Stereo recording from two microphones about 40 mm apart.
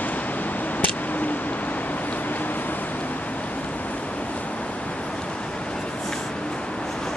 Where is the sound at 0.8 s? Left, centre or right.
Left.